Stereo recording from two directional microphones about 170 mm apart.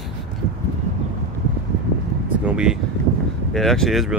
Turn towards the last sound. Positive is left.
turn(degrees=0)  # may be behind; listen again after turning